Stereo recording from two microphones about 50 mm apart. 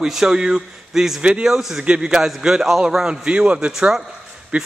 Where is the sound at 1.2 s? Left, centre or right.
Right.